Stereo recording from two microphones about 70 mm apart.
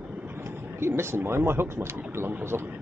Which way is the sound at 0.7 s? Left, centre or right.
Right.